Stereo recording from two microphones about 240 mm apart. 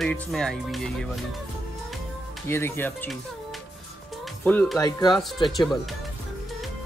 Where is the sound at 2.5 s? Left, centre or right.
Centre.